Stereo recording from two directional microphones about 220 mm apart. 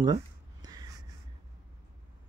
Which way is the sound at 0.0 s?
20° right (ahead or behind).